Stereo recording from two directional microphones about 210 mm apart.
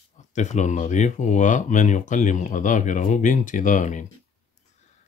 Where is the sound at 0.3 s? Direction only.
35° left (ahead or behind).